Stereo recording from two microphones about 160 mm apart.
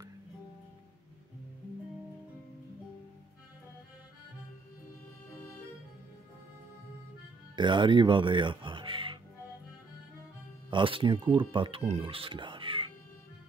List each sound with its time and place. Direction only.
7.5 s speech: 30° right (ahead or behind)
10.7 s speech: 30° right (ahead or behind)